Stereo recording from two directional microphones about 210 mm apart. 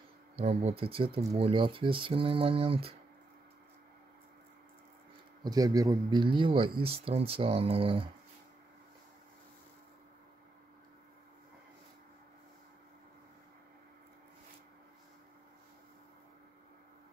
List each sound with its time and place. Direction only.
0.4 s speech: 30° right (ahead or behind)
5.4 s speech: 20° right (ahead or behind)